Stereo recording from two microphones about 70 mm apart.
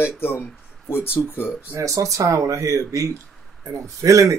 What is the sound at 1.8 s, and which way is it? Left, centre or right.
Speech, right.